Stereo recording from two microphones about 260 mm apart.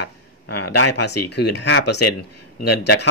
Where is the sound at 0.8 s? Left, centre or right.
Left.